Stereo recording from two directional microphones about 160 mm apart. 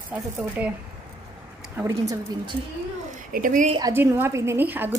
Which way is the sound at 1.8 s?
20° right (ahead or behind).